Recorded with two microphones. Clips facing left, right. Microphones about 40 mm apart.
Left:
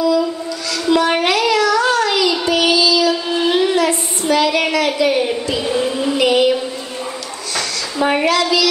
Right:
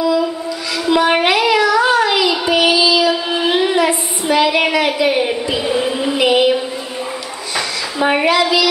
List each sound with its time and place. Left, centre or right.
0.0 s a sound: centre
0.8 s child singing: centre
8.0 s a woman's voice: centre